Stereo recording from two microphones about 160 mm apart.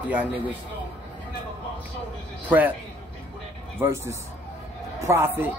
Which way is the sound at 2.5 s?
10° right (ahead or behind).